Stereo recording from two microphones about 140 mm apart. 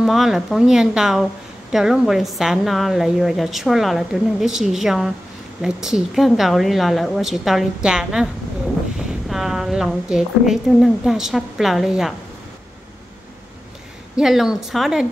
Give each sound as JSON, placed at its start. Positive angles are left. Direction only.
{"t": 0.0, "sound": "a woman's voice", "side_deg": 0}
{"t": 9.3, "sound": "a woman's voice", "side_deg": 0}
{"t": 14.1, "sound": "a woman's voice", "side_deg": 0}